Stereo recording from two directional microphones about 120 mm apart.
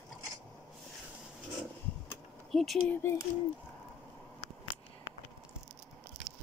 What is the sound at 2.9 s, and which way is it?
Speech, 20° left (ahead or behind).